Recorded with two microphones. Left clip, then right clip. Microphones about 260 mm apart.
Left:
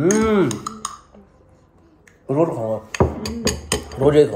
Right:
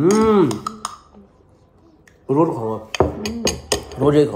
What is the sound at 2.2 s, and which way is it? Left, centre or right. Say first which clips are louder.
Speech: right 2 dB; centre.